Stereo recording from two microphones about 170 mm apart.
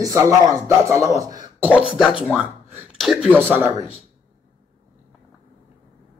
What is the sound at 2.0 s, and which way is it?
Speech, 5° right (ahead or behind).